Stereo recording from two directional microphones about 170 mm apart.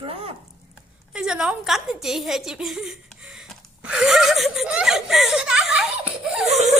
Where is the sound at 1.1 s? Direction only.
5° right (ahead or behind).